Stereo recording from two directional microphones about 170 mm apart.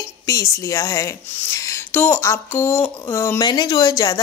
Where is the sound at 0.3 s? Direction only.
20° left (ahead or behind).